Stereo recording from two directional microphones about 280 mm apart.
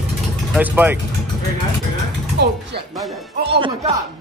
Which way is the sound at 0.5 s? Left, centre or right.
Centre.